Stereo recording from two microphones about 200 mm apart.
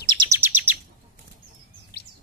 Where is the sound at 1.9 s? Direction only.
55° left (ahead or behind).